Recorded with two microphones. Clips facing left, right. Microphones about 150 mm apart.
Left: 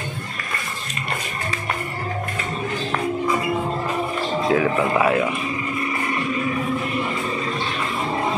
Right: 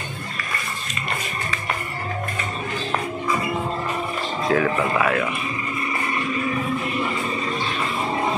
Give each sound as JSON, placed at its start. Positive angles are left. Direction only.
{"t": 4.5, "sound": "speech", "side_deg": 10}